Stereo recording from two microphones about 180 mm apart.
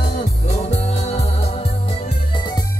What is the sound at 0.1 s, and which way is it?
Music, 40° left (ahead or behind).